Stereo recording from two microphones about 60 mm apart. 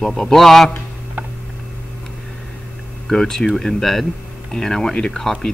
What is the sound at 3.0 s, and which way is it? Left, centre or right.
Speech, centre.